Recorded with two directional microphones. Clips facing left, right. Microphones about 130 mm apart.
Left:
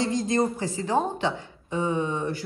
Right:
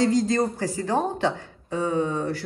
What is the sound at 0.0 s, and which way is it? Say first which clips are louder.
Speech: right 3 dB; 25° left (ahead or behind).